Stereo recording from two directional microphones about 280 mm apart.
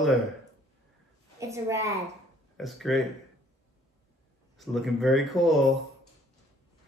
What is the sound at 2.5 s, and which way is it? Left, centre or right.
Speech, centre.